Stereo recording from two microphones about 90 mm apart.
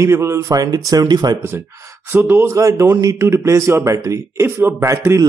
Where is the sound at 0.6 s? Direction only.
45° right (ahead or behind).